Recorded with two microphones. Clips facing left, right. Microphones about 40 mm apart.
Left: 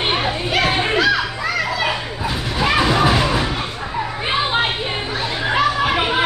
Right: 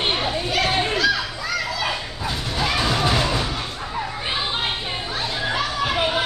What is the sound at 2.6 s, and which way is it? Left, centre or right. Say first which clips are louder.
Music: left 6 dB; left.